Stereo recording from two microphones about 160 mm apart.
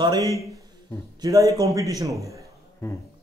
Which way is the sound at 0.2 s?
20° left (ahead or behind).